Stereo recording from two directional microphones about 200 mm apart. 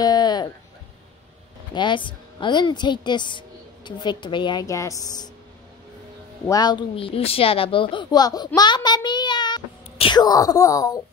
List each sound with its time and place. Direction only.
0.0 s a sound: 20° left (ahead or behind)
1.8 s a woman's voice: 25° left (ahead or behind)
6.4 s a woman's voice: 20° left (ahead or behind)